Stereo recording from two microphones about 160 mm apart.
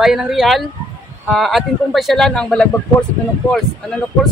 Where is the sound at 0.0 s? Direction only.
Centre (ahead or behind).